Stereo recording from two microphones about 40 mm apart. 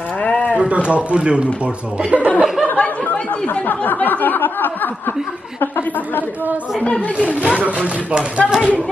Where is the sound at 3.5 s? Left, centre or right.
Left.